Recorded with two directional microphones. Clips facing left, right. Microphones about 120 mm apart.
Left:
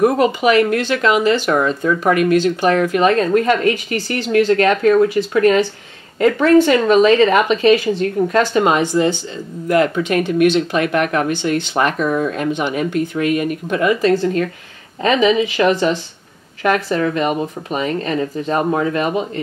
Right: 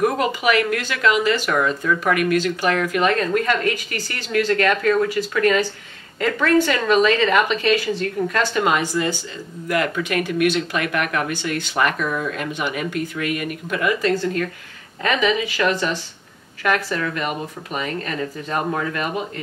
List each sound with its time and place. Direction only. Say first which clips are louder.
0.0 s speech: left 6 dB; 25° left (ahead or behind)